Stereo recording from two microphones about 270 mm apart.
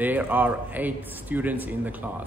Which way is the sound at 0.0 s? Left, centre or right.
Centre.